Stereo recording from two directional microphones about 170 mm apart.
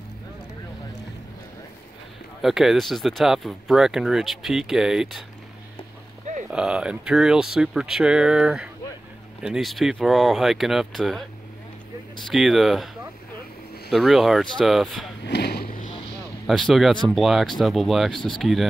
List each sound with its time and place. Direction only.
2.4 s speech: centre (ahead or behind)
6.5 s speech: 5° right (ahead or behind)
15.2 s vehicle: 85° left
15.8 s vehicle: 40° left (ahead or behind)
16.4 s speech: centre (ahead or behind)